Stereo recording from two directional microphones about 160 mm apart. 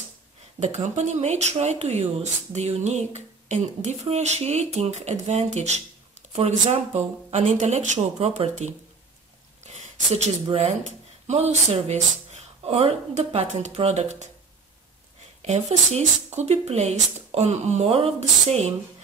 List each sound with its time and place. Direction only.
0.6 s speech: 45° right (ahead or behind)
15.4 s speech: 45° right (ahead or behind)